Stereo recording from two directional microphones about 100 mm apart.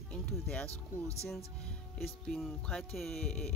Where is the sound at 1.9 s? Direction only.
5° left (ahead or behind).